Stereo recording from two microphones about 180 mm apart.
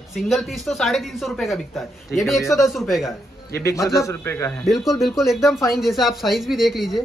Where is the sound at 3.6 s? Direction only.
15° left (ahead or behind).